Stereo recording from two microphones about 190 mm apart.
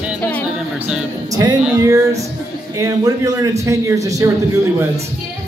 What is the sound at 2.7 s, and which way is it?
A man's voice, 20° right (ahead or behind).